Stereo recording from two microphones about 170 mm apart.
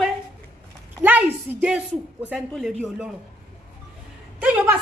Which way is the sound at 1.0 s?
10° right (ahead or behind).